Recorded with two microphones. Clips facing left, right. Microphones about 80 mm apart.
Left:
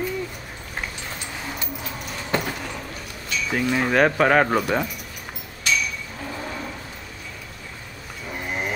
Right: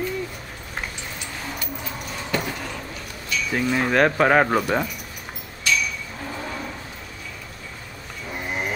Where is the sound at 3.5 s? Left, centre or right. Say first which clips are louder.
Even; centre.